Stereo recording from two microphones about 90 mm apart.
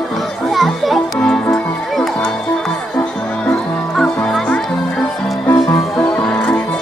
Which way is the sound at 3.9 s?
5° left (ahead or behind).